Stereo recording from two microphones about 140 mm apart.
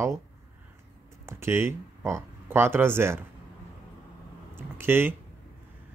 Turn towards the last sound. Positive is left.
turn(degrees=-15)  # may be behind; listen again after turning